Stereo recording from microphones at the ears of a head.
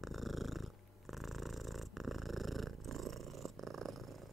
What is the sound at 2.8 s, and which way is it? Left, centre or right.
Purr, right.